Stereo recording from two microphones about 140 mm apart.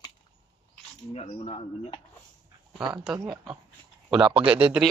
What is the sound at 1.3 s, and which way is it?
Speech, 45° left (ahead or behind).